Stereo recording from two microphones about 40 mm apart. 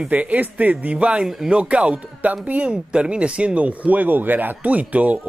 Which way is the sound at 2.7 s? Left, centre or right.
Right.